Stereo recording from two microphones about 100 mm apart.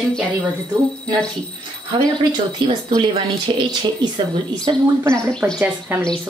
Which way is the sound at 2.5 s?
50° right (ahead or behind).